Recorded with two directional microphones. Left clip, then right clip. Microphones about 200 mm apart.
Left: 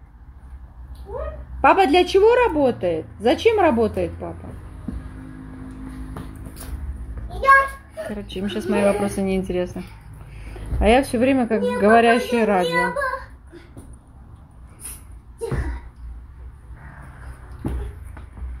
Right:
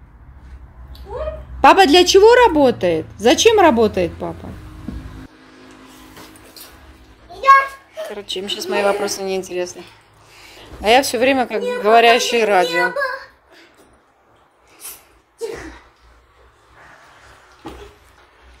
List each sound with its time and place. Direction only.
1.6 s a woman's voice: 25° right (ahead or behind)
7.9 s a woman's voice: 20° right (ahead or behind)
10.8 s a woman's voice: 20° right (ahead or behind)